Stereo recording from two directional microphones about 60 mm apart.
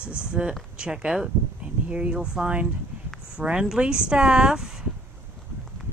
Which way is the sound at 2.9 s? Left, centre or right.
Right.